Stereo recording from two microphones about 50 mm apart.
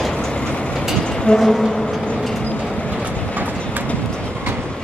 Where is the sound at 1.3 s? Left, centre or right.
Left.